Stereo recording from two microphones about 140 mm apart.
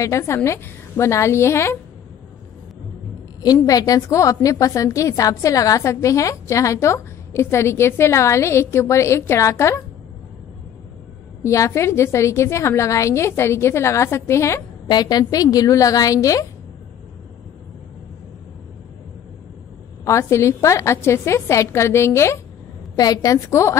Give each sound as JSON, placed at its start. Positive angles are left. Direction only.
{"t": 0.0, "sound": "a woman's voice", "side_deg": 20}
{"t": 3.4, "sound": "a woman's voice", "side_deg": 25}
{"t": 11.4, "sound": "a woman's voice", "side_deg": 20}
{"t": 20.1, "sound": "a woman's voice", "side_deg": 20}